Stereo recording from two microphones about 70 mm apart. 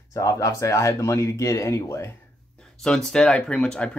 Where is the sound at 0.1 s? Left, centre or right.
Left.